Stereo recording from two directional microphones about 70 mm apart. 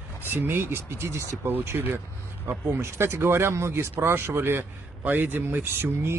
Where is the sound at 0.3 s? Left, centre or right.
Right.